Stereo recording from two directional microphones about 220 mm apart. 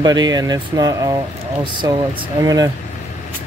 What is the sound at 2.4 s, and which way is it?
Speech, 15° right (ahead or behind).